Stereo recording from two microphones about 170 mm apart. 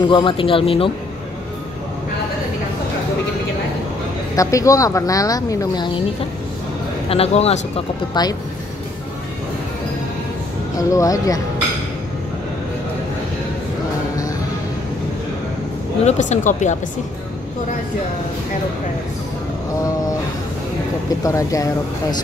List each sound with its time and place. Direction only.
0.0 s speech: 30° left (ahead or behind)
4.4 s a woman's voice: 20° left (ahead or behind)
7.1 s speech: 35° left (ahead or behind)
8.1 s a woman's voice: 25° left (ahead or behind)
10.8 s a woman's voice: 20° left (ahead or behind)
16.0 s speech: 40° left (ahead or behind)
21.2 s a woman's voice: 20° left (ahead or behind)